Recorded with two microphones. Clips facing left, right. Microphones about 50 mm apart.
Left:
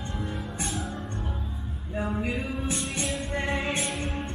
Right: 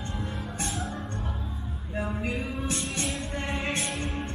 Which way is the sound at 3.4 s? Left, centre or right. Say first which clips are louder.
Left 5 dB; centre.